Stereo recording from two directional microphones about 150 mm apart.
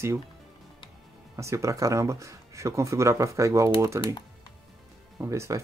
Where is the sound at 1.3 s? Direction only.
20° right (ahead or behind).